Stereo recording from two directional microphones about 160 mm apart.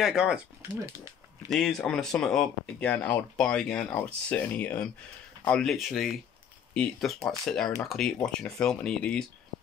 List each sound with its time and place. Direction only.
0.0 s speech: 5° right (ahead or behind)
0.6 s speech: 15° right (ahead or behind)
1.5 s speech: 5° left (ahead or behind)